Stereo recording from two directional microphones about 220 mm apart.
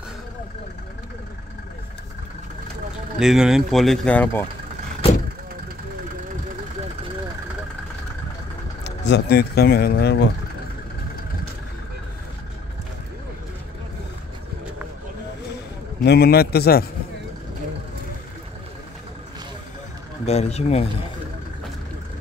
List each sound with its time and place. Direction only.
3.2 s speech: centre (ahead or behind)
8.8 s speech: 50° left (ahead or behind)
16.0 s a man's voice: 45° left (ahead or behind)
20.2 s speech: 30° left (ahead or behind)